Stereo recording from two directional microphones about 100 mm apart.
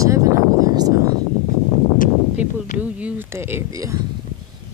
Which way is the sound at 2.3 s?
15° right (ahead or behind).